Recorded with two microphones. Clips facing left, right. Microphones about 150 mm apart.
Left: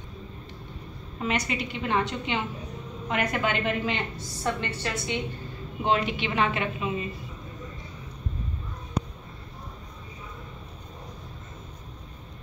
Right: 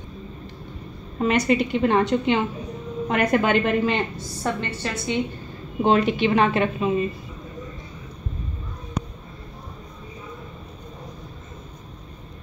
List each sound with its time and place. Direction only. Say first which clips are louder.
1.2 s a woman's voice: right 9 dB; 50° right (ahead or behind)